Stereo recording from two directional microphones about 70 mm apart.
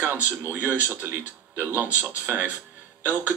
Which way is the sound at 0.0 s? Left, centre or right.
Right.